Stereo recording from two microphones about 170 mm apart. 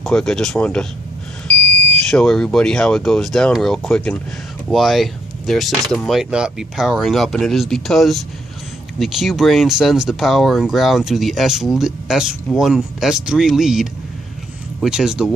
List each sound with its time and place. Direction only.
0.0 s speech: 5° left (ahead or behind)
2.0 s speech: centre (ahead or behind)